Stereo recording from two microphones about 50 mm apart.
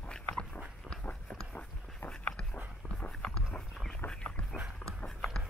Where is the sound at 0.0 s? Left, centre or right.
Centre.